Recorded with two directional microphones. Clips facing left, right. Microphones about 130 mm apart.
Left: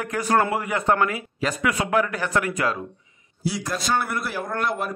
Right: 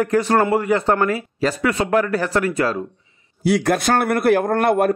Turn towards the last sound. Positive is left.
turn(degrees=-60)  # may be behind; listen again after turning